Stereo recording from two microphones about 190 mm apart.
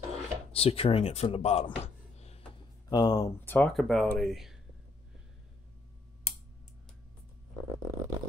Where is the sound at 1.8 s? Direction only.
35° left (ahead or behind).